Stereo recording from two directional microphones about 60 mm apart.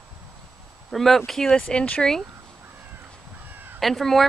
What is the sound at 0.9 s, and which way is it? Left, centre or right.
A woman's voice, centre.